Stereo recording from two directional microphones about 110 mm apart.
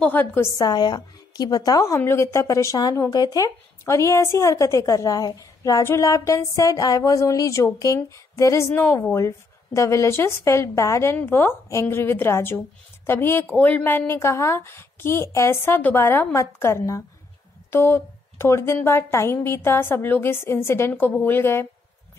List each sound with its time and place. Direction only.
0.0 s a woman's voice: 15° left (ahead or behind)
0.6 s a woman's voice: 40° left (ahead or behind)
2.0 s speech: 25° left (ahead or behind)